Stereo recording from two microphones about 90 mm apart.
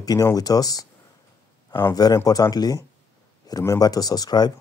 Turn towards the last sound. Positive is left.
turn(degrees=50)  # may be behind; listen again after turning